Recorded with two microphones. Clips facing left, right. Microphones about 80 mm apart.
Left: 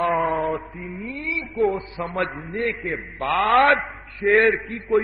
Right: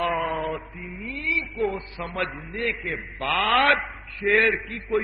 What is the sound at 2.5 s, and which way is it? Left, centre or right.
Speech, left.